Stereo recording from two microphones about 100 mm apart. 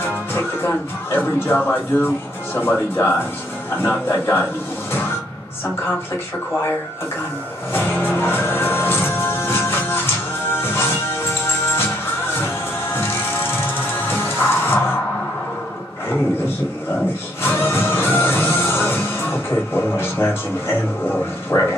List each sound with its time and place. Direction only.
0.0 s speech: 25° left (ahead or behind)
7.7 s music: 20° left (ahead or behind)
14.1 s music: 25° left (ahead or behind)
17.4 s music: 25° left (ahead or behind)